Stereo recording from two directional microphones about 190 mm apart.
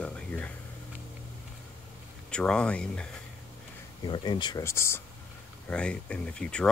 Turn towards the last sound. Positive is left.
turn(degrees=5)  # may be behind; listen again after turning